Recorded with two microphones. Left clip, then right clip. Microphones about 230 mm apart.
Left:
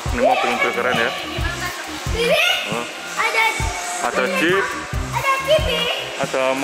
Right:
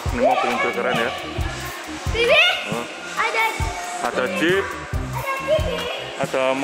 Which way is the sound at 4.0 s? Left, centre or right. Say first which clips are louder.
Left 2 dB; centre.